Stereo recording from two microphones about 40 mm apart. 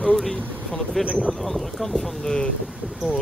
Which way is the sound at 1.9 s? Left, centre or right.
Centre.